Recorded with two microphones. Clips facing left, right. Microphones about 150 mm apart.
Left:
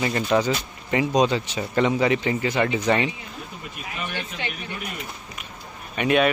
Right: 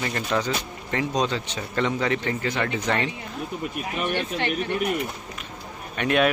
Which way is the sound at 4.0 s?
60° right (ahead or behind).